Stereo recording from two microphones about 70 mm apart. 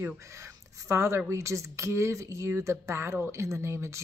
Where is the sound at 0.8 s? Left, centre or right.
Right.